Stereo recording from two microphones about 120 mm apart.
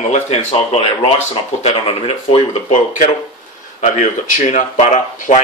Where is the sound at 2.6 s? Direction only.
80° left.